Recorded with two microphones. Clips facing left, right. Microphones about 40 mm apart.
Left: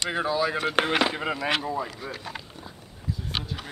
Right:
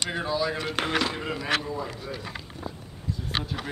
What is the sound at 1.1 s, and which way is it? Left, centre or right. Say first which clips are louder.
Speech: left 3 dB; centre.